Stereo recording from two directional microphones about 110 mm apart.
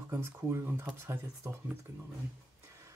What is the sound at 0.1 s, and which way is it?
Speech, 20° right (ahead or behind).